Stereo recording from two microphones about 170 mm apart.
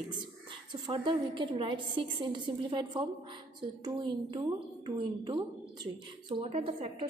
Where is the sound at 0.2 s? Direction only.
25° right (ahead or behind).